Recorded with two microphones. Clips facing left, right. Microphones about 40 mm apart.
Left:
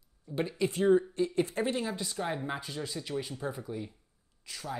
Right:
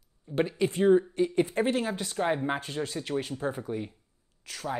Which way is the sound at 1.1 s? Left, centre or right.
Right.